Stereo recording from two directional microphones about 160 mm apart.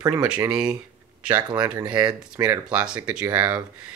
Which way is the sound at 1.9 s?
25° right (ahead or behind).